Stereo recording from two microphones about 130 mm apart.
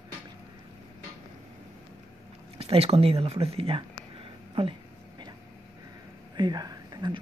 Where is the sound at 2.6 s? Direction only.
50° right (ahead or behind).